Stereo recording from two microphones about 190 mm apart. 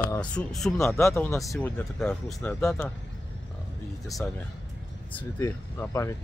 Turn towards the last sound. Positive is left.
turn(degrees=15)  # may be behind; listen again after turning